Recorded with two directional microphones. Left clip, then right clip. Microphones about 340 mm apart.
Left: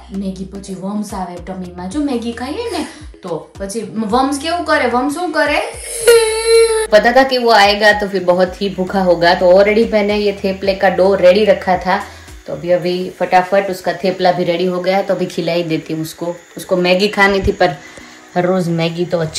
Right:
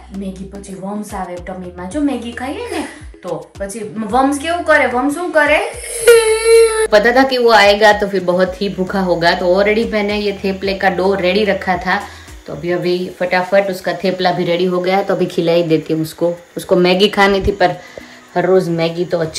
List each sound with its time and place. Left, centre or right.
1.9 s a woman's voice: centre